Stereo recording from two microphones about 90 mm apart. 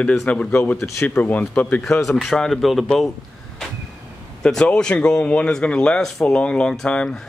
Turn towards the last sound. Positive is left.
turn(degrees=10)  # may be behind; listen again after turning